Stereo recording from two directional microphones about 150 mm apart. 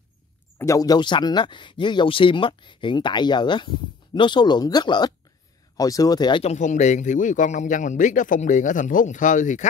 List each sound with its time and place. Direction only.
0.6 s speech: 20° left (ahead or behind)
6.4 s speech: 50° left (ahead or behind)